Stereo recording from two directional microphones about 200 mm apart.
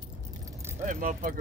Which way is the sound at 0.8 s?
40° right (ahead or behind).